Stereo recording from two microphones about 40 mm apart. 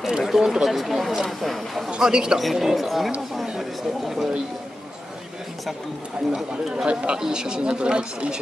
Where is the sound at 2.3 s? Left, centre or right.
Centre.